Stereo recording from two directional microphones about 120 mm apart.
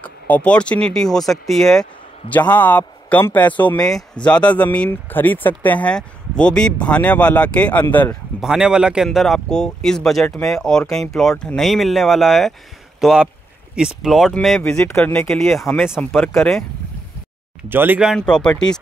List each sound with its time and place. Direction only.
0.0 s speech: 10° left (ahead or behind)
2.3 s speech: 15° left (ahead or behind)
8.4 s speech: 5° right (ahead or behind); by 15.2 s 15° left (ahead or behind)
15.2 s speech: 5° left (ahead or behind)
17.6 s speech: 15° right (ahead or behind)
18.0 s speech: 5° left (ahead or behind)